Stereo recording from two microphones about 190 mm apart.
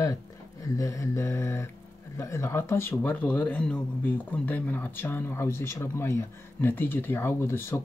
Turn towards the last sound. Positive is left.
turn(degrees=15)  # may be behind; listen again after turning